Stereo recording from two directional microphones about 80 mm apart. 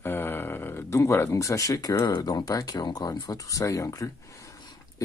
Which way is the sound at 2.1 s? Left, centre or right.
Left.